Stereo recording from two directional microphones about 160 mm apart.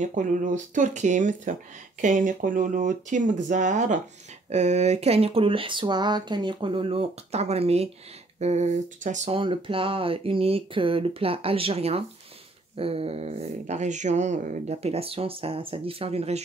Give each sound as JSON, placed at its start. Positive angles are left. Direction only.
{"t": 0.0, "sound": "speech", "side_deg": -50}
{"t": 9.4, "sound": "speech", "side_deg": -35}